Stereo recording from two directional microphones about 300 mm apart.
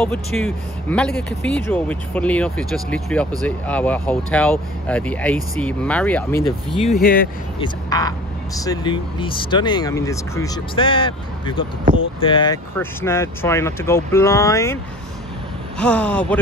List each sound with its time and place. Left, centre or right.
0.0 s speech: centre
7.0 s speech: left
7.5 s speech: centre
15.8 s speech: centre